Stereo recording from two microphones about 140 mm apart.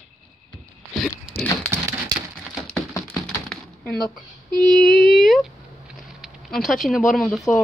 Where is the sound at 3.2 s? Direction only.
5° left (ahead or behind).